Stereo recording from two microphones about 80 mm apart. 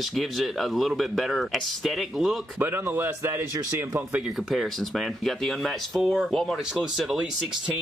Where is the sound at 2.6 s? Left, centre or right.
Right.